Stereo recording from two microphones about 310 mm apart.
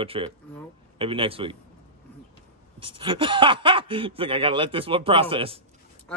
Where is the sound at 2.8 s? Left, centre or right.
Centre.